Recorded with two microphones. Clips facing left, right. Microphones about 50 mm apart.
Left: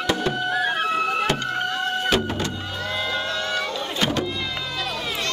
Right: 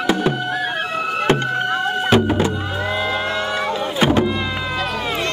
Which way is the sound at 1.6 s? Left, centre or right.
Centre.